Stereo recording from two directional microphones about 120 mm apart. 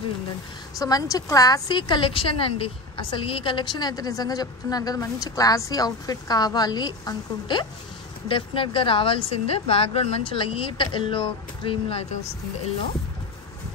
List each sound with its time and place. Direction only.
0.7 s a woman's voice: 30° left (ahead or behind); by 12.2 s 55° left (ahead or behind)